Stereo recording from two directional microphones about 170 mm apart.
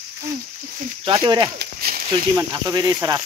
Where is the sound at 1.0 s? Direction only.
25° right (ahead or behind).